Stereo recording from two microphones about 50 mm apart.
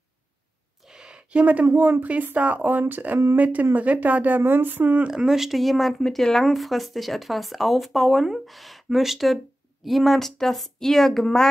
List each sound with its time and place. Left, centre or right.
0.8 s a sound: centre
1.4 s speech: right
4.4 s speech: right
5.0 s a woman's voice: centre